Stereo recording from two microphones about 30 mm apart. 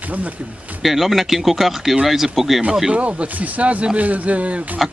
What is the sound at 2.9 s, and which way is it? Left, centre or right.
Speech, right.